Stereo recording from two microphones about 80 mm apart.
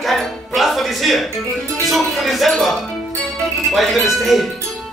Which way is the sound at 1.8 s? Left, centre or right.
Centre.